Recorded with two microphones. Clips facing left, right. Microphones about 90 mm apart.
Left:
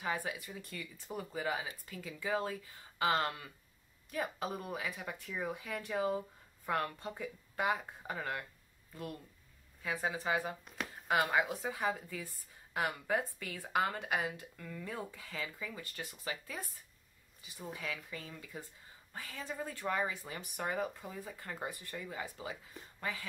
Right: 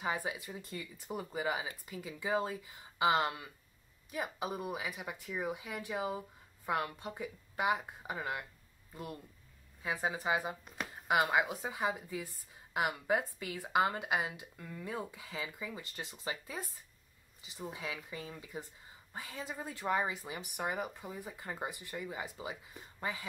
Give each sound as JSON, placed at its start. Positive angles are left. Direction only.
{"t": 0.0, "sound": "speech", "side_deg": -20}
{"t": 0.9, "sound": "speech", "side_deg": -10}